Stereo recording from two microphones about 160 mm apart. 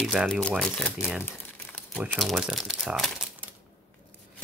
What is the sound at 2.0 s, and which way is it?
Speech, centre (ahead or behind).